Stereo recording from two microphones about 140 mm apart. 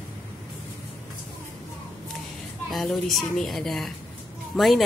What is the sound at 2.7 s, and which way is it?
A woman's voice, centre (ahead or behind).